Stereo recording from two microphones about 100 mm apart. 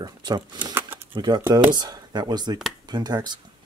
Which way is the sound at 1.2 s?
50° right (ahead or behind).